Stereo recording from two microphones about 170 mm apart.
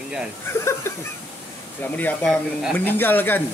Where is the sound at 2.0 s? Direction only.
10° left (ahead or behind).